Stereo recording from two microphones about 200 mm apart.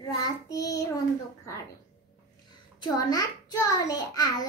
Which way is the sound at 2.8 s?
20° left (ahead or behind).